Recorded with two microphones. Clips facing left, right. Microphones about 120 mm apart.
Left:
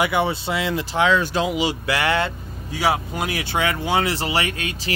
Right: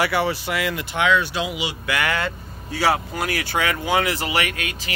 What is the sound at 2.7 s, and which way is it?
Speech, 15° left (ahead or behind).